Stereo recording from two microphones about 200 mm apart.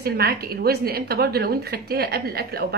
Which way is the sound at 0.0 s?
50° right (ahead or behind).